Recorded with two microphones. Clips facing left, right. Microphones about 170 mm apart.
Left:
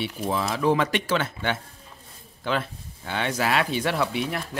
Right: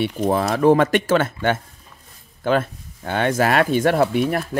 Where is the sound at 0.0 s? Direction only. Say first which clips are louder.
Right 7 dB; 55° right (ahead or behind).